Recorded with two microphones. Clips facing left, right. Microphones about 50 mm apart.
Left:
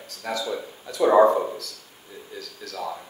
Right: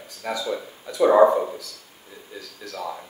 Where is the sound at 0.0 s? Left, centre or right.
Centre.